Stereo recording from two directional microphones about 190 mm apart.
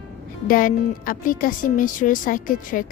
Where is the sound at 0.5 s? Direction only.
45° left (ahead or behind).